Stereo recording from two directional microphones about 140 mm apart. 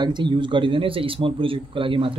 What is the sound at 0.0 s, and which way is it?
A man's voice, 35° right (ahead or behind).